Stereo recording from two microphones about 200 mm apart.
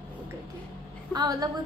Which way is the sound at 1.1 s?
20° right (ahead or behind).